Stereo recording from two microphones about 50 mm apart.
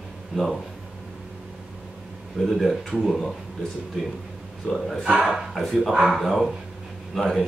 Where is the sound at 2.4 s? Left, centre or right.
Centre.